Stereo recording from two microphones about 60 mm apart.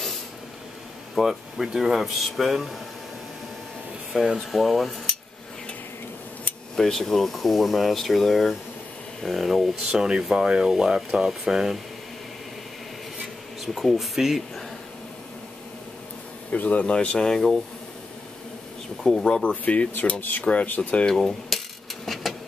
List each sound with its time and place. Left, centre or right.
1.1 s speech: centre
4.1 s speech: centre
6.8 s speech: centre
13.7 s speech: centre
16.5 s speech: left; by 17.6 s centre
19.0 s speech: centre
19.5 s speech: left
21.0 s speech: centre
22.0 s printer: centre